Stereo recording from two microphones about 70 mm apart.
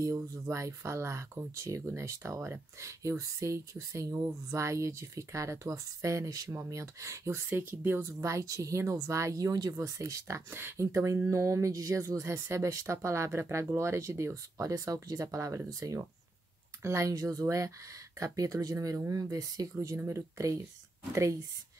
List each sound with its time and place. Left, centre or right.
0.0 s speech: right
7.4 s speech: right
9.8 s speech: right
17.1 s speech: right
20.1 s speech: right